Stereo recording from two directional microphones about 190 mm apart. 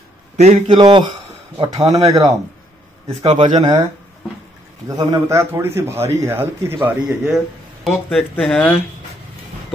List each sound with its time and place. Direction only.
0.4 s a man's voice: 35° right (ahead or behind)
0.7 s speech: 25° right (ahead or behind)
3.3 s a man's voice: 35° right (ahead or behind)
4.8 s a man's voice: 20° right (ahead or behind); by 8.8 s 5° left (ahead or behind)